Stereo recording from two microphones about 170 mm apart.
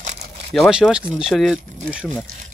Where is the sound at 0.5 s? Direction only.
Centre (ahead or behind).